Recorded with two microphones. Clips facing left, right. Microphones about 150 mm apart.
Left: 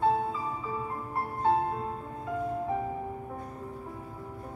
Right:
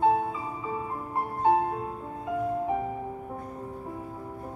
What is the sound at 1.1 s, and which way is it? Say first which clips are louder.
Music: right 3 dB; 20° right (ahead or behind).